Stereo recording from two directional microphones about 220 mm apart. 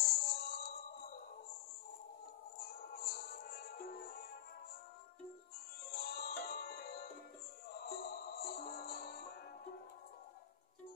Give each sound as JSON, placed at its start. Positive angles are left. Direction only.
{"t": 0.0, "sound": "music", "side_deg": 45}
{"t": 2.8, "sound": "music", "side_deg": 45}
{"t": 5.9, "sound": "music", "side_deg": 45}